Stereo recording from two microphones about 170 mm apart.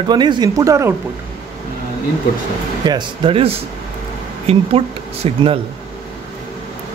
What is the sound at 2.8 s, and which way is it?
Speech, 25° right (ahead or behind).